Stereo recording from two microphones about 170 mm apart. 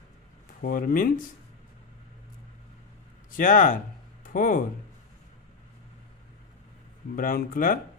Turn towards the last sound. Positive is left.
turn(degrees=55)  # may be behind; listen again after turning